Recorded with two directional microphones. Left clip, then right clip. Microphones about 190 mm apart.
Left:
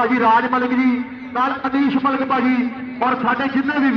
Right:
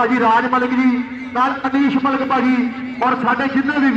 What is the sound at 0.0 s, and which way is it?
A man's voice, 20° left (ahead or behind).